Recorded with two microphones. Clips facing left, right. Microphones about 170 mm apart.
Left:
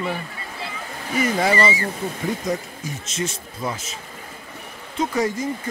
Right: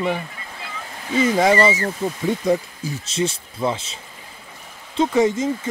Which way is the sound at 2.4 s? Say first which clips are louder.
Right 6 dB; 30° right (ahead or behind).